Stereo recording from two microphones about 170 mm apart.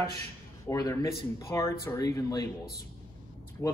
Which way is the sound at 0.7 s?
20° left (ahead or behind).